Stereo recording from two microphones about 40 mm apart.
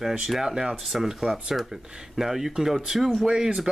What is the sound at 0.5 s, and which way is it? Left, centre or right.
Speech, centre.